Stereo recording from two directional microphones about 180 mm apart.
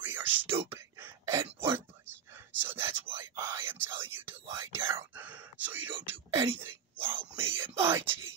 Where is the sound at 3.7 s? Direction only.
15° right (ahead or behind).